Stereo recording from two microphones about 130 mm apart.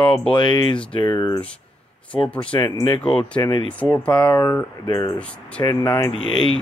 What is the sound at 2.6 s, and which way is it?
Speech, 35° left (ahead or behind).